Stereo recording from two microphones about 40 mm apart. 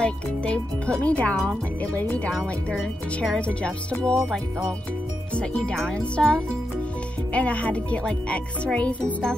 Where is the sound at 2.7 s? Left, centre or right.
Centre.